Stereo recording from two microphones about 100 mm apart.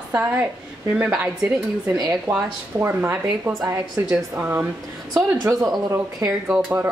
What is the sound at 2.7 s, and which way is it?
Speech, 20° right (ahead or behind).